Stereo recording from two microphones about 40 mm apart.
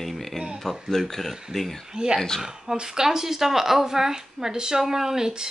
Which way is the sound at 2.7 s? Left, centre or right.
Centre.